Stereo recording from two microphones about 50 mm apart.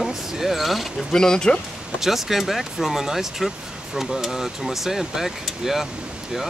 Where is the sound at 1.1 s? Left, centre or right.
Centre.